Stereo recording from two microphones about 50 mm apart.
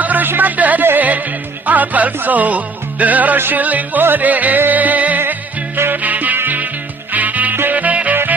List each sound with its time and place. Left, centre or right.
0.0 s music: right